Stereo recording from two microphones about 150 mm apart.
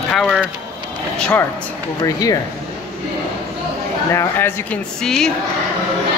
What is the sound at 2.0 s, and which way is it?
Speech, 25° left (ahead or behind).